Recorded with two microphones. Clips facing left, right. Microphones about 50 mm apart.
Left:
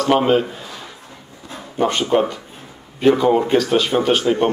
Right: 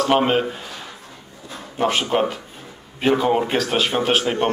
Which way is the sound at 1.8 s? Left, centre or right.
Centre.